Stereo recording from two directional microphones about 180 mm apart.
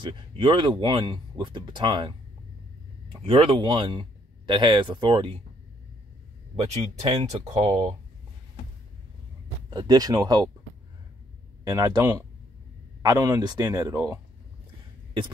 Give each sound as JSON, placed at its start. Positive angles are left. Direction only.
{"t": 0.0, "sound": "speech", "side_deg": -25}
{"t": 6.5, "sound": "speech", "side_deg": -35}
{"t": 9.7, "sound": "speech", "side_deg": -20}
{"t": 11.6, "sound": "speech", "side_deg": -20}